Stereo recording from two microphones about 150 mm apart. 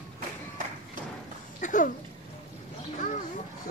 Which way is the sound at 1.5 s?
60° left (ahead or behind).